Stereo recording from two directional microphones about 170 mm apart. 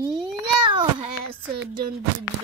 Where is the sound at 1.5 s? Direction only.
60° right (ahead or behind).